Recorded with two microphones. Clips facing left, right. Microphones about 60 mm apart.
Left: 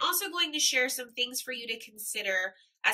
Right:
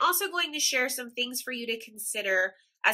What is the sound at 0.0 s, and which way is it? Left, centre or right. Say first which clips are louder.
A woman's voice: right 5 dB; right.